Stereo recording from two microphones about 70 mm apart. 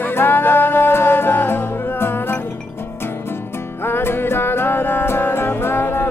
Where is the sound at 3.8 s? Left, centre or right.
Left.